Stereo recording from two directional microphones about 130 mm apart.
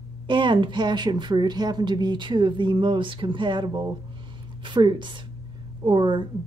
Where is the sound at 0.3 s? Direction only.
40° right (ahead or behind).